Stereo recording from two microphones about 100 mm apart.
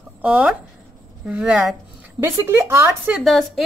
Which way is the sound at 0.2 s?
10° right (ahead or behind).